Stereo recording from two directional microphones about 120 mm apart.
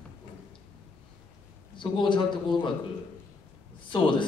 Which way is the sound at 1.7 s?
40° left (ahead or behind).